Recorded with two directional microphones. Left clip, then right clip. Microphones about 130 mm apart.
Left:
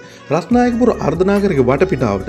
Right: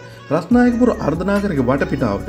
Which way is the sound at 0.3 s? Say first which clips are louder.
Left 1 dB; 50° left (ahead or behind).